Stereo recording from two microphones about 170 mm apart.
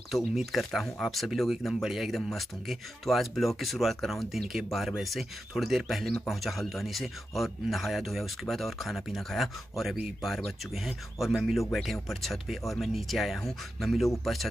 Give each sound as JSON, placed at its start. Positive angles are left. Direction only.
{"t": 0.1, "sound": "speech", "side_deg": 0}